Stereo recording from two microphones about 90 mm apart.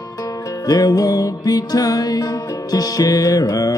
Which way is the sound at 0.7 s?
45° left (ahead or behind).